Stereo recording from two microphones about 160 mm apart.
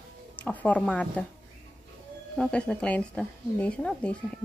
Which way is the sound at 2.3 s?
5° left (ahead or behind).